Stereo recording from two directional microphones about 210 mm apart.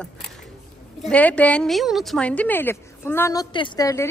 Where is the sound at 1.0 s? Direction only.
5° left (ahead or behind).